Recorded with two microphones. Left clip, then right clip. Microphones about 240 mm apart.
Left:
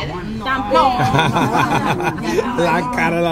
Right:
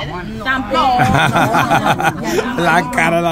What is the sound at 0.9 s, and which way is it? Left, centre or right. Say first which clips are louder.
A man's voice: right 3 dB; centre.